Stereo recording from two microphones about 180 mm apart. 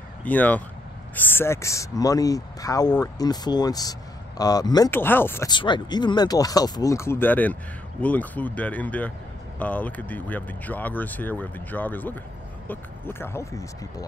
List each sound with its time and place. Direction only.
0.2 s speech: 10° left (ahead or behind)
5.5 s speech: 25° left (ahead or behind)